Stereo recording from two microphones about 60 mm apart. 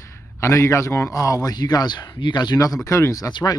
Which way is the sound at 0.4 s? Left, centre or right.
Left.